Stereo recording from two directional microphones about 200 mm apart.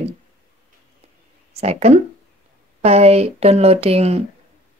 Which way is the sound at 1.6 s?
30° right (ahead or behind).